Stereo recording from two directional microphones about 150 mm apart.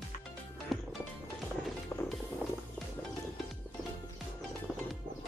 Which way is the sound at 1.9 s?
15° left (ahead or behind).